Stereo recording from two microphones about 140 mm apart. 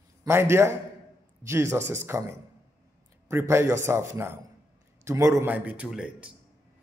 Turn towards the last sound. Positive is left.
turn(degrees=-5)  # may be behind; listen again after turning